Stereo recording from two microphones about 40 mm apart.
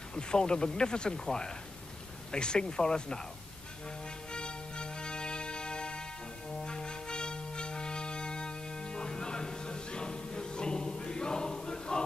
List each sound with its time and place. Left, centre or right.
0.1 s speech: left
4.3 s music: left